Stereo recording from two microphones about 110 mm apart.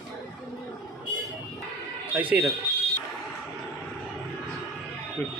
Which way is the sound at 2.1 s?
15° right (ahead or behind).